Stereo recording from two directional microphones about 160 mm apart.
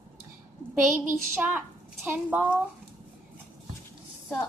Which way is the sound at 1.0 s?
10° right (ahead or behind).